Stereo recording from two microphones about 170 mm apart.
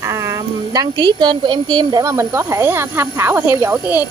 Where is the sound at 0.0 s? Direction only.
15° right (ahead or behind).